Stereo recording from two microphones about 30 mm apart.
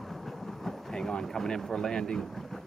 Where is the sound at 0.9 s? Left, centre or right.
Left.